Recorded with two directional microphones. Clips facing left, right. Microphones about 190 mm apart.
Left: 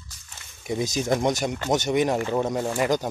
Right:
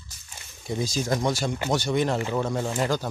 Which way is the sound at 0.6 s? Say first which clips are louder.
Left 2 dB; 20° left (ahead or behind).